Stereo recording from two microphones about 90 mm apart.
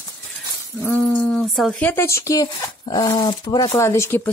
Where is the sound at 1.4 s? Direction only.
Centre (ahead or behind).